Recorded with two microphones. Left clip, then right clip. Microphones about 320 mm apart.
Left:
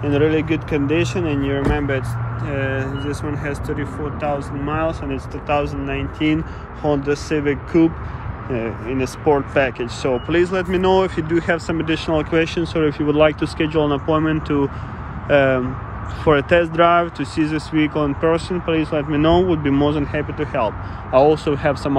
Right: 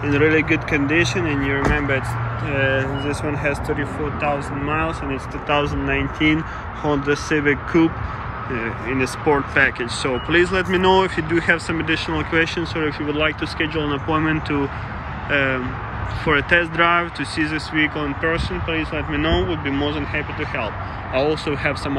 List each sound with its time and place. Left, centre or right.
0.0 s speech: centre
19.3 s speech: left
20.3 s speech: centre